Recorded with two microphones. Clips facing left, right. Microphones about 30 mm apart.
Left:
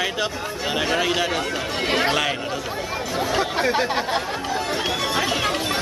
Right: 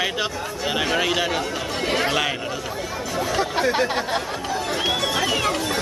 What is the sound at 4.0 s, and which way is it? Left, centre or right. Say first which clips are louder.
Music: left 1 dB; centre.